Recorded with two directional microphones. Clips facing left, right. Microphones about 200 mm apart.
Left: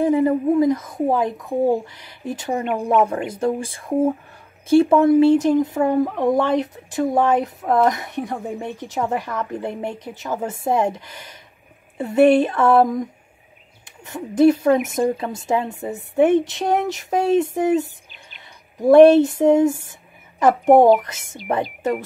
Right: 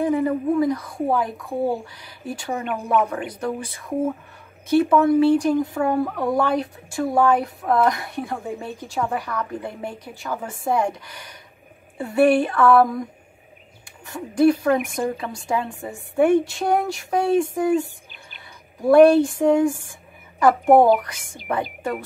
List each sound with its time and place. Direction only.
0.0 s speech: 25° left (ahead or behind)
3.5 s speech: 50° left (ahead or behind)
4.6 s a woman's voice: 30° left (ahead or behind)